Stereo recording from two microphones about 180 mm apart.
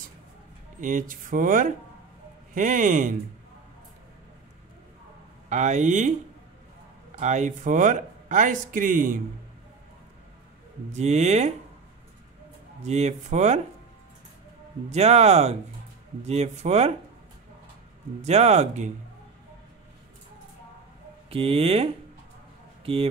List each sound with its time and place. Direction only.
0.7 s speech: 45° right (ahead or behind)
5.5 s speech: 40° right (ahead or behind)
7.2 s speech: 40° right (ahead or behind)
10.9 s speech: 40° right (ahead or behind)
12.8 s speech: 40° right (ahead or behind)
14.9 s speech: 35° right (ahead or behind)
18.2 s speech: 40° right (ahead or behind)
21.3 s speech: 35° right (ahead or behind)